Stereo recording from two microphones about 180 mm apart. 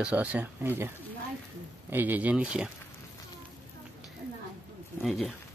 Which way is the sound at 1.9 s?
10° right (ahead or behind).